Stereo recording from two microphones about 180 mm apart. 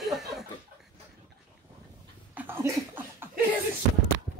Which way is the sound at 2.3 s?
10° right (ahead or behind).